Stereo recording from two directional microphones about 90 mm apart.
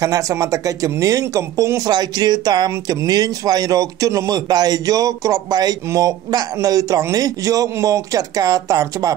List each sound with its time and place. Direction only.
0.0 s a man's voice: 35° right (ahead or behind)
1.9 s a man's voice: 50° right (ahead or behind)